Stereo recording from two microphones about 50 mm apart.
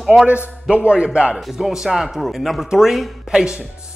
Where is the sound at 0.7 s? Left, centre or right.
Right.